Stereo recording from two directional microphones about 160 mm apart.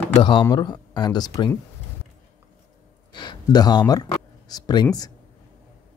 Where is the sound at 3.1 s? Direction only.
30° left (ahead or behind).